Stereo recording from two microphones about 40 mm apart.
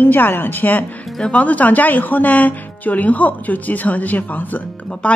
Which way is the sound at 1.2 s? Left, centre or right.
Left.